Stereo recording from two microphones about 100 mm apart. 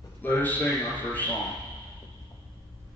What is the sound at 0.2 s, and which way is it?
Speech, 15° left (ahead or behind).